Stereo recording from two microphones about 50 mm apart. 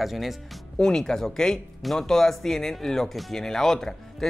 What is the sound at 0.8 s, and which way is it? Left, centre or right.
Speech, centre.